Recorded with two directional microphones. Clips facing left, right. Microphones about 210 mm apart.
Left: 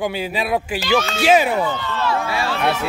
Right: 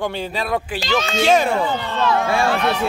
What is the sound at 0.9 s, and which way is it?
Speech, 5° left (ahead or behind).